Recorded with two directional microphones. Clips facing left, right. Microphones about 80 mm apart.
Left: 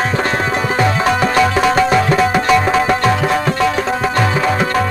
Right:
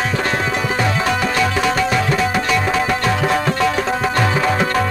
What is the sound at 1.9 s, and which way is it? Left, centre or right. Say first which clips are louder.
Music: left 5 dB; left.